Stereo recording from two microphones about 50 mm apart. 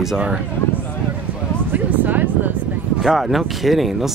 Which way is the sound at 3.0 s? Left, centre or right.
Centre.